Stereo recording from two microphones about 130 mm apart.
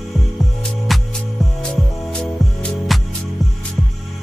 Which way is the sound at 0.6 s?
Centre (ahead or behind).